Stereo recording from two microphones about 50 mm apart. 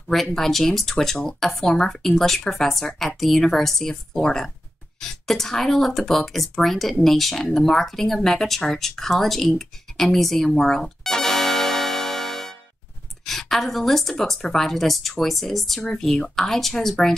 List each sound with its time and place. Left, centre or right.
0.1 s speech: centre